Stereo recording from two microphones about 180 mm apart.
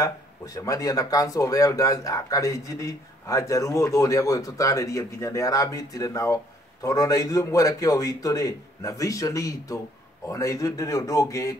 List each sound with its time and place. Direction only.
0.6 s speech: 20° left (ahead or behind)